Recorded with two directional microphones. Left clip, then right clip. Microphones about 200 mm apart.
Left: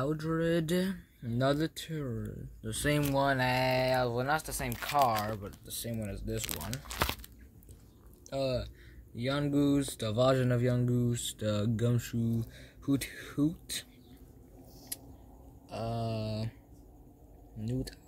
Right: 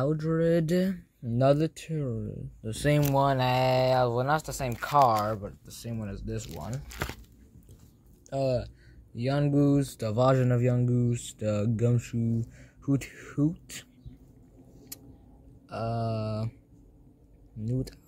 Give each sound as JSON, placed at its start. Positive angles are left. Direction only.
{"t": 0.0, "sound": "speech", "side_deg": -15}
{"t": 8.3, "sound": "speech", "side_deg": -15}
{"t": 15.7, "sound": "speech", "side_deg": -15}
{"t": 17.6, "sound": "speech", "side_deg": -10}